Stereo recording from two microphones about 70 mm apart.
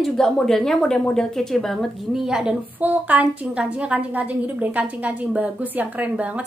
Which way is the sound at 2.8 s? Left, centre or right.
Right.